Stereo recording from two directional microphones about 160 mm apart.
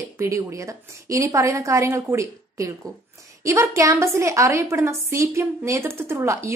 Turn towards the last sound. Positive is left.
turn(degrees=-20)  # may be behind; listen again after turning